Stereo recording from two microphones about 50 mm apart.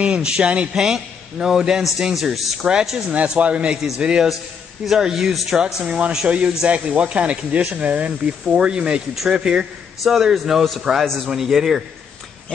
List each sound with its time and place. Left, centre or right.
0.0 s a man's voice: right; by 2.6 s centre
2.6 s a man's voice: centre
3.1 s speech: right
3.7 s a man's voice: centre
5.9 s a man's voice: right
10.0 s a man's voice: centre